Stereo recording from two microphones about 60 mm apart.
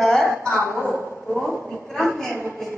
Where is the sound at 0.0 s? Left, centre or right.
Centre.